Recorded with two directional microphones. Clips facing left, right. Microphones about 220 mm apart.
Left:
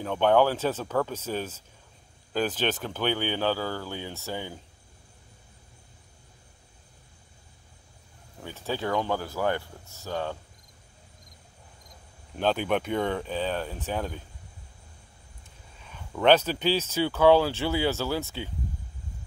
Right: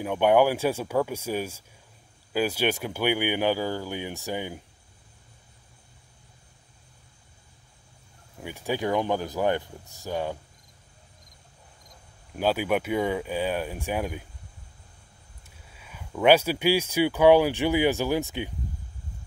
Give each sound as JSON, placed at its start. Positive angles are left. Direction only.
{"t": 0.0, "sound": "speech", "side_deg": -10}
{"t": 8.4, "sound": "speech", "side_deg": -15}
{"t": 12.4, "sound": "speech", "side_deg": -10}
{"t": 15.7, "sound": "speech", "side_deg": -10}